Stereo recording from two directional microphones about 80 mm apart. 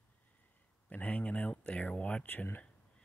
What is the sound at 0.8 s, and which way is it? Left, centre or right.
Speech, centre.